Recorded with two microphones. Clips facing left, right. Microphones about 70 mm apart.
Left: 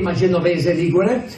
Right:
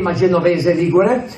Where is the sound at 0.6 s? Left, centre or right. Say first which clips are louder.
Right 3 dB; right.